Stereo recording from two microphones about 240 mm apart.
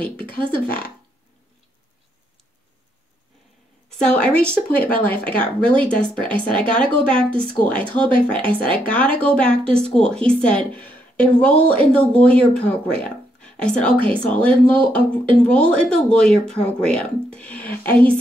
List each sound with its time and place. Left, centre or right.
0.0 s speech: centre
3.9 s speech: centre
8.0 s speech: right
8.8 s a woman's voice: centre
13.9 s speech: right
14.7 s speech: centre